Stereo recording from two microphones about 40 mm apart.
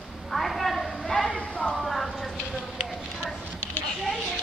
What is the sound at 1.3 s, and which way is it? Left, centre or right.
Speech, left.